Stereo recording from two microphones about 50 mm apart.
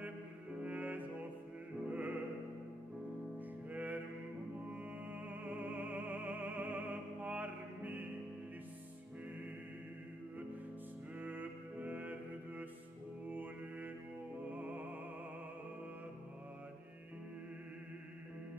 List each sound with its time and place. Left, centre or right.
0.6 s music: right
3.3 s music: right
11.1 s mantra: right
13.3 s music: right